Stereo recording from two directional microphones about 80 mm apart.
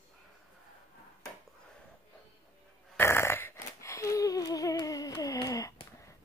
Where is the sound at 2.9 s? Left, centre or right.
Left.